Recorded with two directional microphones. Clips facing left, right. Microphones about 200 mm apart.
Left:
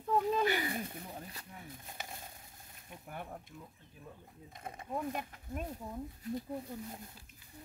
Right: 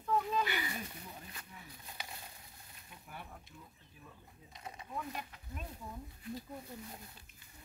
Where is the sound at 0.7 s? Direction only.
55° left (ahead or behind).